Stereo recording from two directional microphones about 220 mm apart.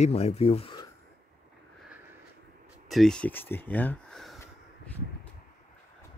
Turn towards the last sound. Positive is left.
turn(degrees=0)  # may be behind; listen again after turning